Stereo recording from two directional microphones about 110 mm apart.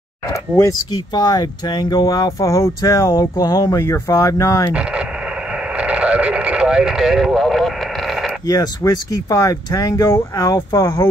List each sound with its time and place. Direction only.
0.3 s speech: 30° left (ahead or behind)
4.7 s radio: 10° right (ahead or behind)
8.5 s speech: 35° left (ahead or behind)